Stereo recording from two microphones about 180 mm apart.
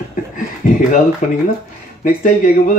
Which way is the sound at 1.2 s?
45° left (ahead or behind).